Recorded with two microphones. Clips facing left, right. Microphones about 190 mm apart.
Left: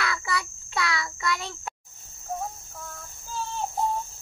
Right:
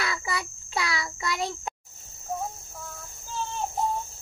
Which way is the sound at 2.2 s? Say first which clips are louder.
Even; 10° right (ahead or behind).